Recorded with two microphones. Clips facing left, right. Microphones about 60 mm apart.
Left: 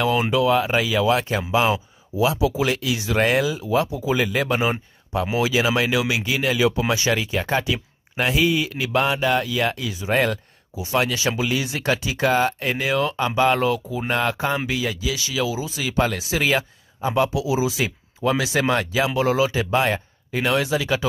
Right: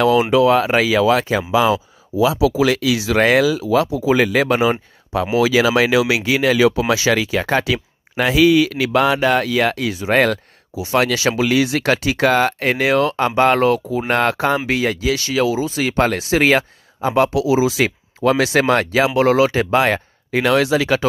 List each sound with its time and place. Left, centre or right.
0.0 s speech: right
2.4 s speech: right
14.7 s speech: right